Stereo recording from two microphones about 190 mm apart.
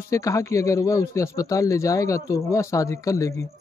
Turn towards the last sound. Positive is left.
turn(degrees=15)  # may be behind; listen again after turning